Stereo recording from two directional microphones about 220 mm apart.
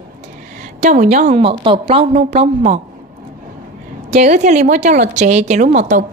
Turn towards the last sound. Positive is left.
turn(degrees=-35)  # may be behind; listen again after turning